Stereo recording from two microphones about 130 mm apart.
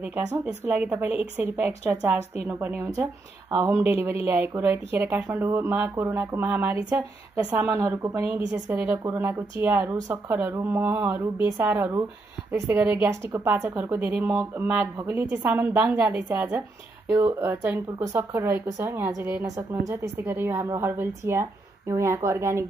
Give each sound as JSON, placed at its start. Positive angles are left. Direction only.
{"t": 0.5, "sound": "speech", "side_deg": -15}
{"t": 19.4, "sound": "speech", "side_deg": -25}